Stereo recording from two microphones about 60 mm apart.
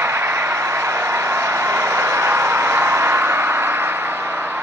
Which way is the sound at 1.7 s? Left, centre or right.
Right.